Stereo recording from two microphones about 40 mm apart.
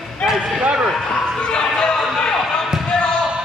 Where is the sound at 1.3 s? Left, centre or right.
Left.